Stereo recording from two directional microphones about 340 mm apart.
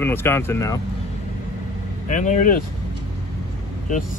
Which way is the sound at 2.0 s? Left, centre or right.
Left.